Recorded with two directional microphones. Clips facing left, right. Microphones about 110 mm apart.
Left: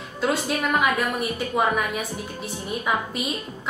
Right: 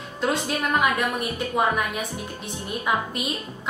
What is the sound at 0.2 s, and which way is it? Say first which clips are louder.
A woman's voice: left 1 dB; centre (ahead or behind).